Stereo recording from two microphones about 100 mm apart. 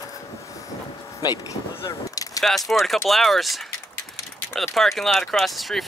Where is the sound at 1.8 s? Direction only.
35° left (ahead or behind).